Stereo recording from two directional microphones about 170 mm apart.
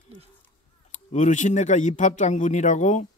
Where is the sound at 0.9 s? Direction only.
45° left (ahead or behind).